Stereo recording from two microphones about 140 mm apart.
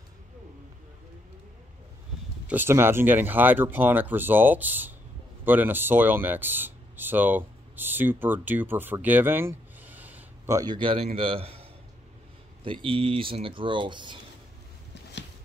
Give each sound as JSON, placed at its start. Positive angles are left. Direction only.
{"t": 2.4, "sound": "speech", "side_deg": -15}
{"t": 10.5, "sound": "speech", "side_deg": -30}
{"t": 12.8, "sound": "speech", "side_deg": -40}